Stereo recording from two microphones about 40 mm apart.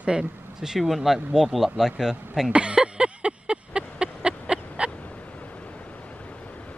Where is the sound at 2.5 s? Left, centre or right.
Right.